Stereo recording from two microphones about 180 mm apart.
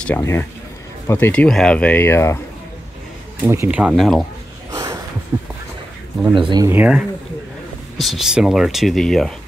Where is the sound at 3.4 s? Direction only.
15° right (ahead or behind).